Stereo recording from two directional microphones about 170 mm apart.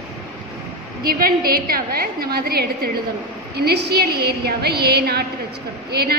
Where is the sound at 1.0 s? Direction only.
60° right (ahead or behind).